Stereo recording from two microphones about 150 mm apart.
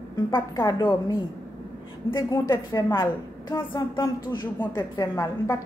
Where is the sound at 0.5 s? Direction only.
25° left (ahead or behind).